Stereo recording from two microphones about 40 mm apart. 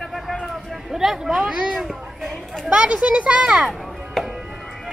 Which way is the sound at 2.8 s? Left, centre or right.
Right.